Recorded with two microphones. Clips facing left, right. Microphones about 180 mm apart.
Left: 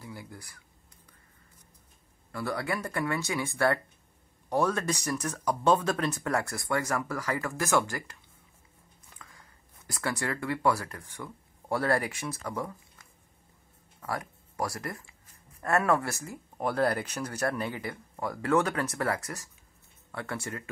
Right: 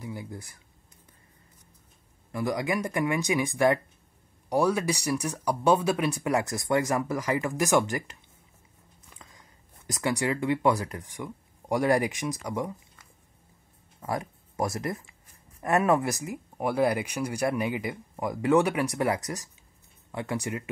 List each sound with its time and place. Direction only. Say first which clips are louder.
0.0 s a sound: right 6 dB; 20° right (ahead or behind)
2.3 s speech: right 4 dB; 15° right (ahead or behind)
9.2 s speech: even; 20° right (ahead or behind)
14.0 s speech: right 4 dB; 20° right (ahead or behind)